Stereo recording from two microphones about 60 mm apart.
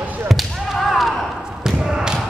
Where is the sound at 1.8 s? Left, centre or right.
Centre.